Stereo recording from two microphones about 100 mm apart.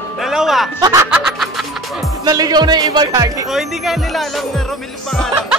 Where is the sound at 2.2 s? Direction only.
40° right (ahead or behind).